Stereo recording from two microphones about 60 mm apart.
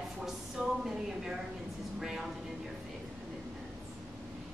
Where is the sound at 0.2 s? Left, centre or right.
Centre.